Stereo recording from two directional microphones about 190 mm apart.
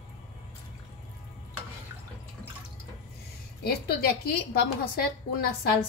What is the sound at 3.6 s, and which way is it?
A woman's voice, 55° left (ahead or behind).